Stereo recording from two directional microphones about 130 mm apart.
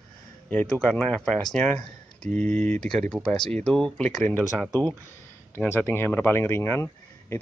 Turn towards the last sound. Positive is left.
turn(degrees=20)  # may be behind; listen again after turning